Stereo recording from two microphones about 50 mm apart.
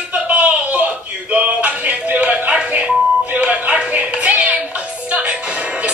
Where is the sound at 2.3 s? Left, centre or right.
Right.